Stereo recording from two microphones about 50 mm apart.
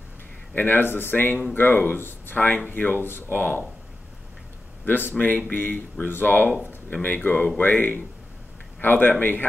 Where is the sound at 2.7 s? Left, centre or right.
Left.